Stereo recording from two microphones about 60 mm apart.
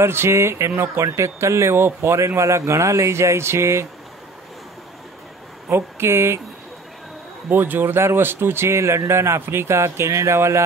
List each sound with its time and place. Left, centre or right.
0.0 s a man's voice: right
1.0 s a man's voice: right
5.7 s a man's voice: right
7.4 s a man's voice: right